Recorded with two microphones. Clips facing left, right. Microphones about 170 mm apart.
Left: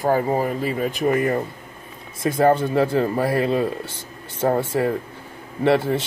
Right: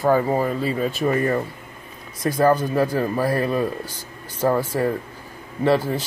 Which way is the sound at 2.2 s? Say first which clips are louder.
Left 1 dB; 25° left (ahead or behind).